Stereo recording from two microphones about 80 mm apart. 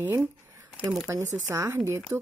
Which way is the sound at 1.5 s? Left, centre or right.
Right.